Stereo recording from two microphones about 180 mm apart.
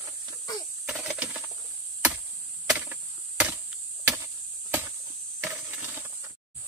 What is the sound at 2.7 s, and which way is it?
Chop, 5° right (ahead or behind).